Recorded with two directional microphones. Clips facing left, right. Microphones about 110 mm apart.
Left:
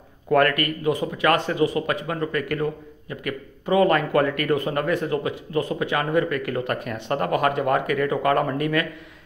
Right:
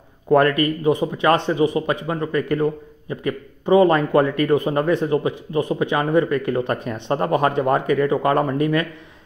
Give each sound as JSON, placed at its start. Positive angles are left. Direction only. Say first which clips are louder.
{"t": 0.3, "sound": "a man's voice", "louder": "right 4 dB", "side_deg": -25}